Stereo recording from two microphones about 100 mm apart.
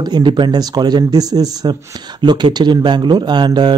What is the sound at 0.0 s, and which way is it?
Speech, 50° right (ahead or behind).